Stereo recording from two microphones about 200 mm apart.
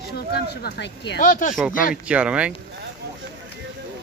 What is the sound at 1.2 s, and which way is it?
Speech, 40° left (ahead or behind).